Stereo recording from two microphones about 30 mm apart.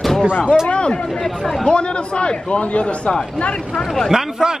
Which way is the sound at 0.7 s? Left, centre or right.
Left.